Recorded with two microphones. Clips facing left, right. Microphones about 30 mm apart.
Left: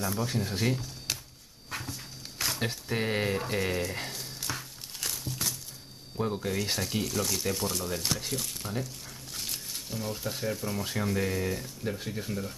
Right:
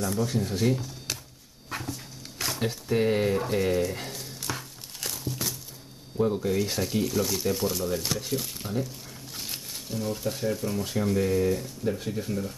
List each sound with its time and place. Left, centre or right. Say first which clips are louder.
0.0 s speech: right 3 dB; centre
1.7 s a sound: right 3 dB; centre
6.2 s speech: right 5 dB; centre
7.1 s speech: right 4 dB; centre
9.8 s speech: right 6 dB; centre